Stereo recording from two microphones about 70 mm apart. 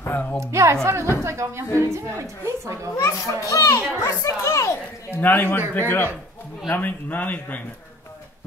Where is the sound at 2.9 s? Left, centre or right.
Left.